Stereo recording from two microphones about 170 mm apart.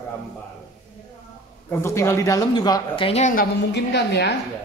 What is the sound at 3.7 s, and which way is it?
Speech, 75° left (ahead or behind).